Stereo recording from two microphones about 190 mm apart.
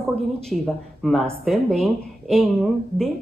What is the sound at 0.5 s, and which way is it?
A woman's voice, centre (ahead or behind).